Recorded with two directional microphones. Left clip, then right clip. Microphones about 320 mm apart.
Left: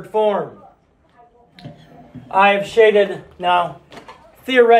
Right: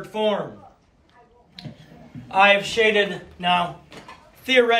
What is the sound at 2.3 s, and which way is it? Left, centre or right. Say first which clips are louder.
A man's voice: left 2 dB; centre.